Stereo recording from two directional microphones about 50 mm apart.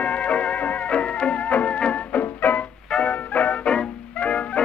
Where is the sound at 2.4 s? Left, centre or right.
Left.